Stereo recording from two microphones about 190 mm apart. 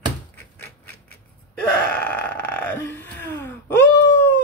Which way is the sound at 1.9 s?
10° left (ahead or behind).